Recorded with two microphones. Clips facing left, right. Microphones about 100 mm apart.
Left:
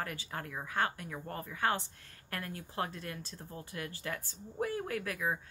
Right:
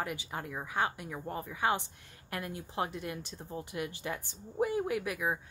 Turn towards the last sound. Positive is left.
turn(degrees=-15)  # may be behind; listen again after turning